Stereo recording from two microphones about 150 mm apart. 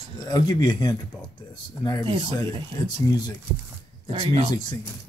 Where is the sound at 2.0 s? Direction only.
35° right (ahead or behind).